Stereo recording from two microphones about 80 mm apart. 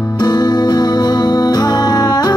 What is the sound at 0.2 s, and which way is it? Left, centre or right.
Music, left.